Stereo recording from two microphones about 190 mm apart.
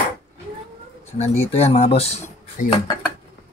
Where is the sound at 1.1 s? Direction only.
35° left (ahead or behind).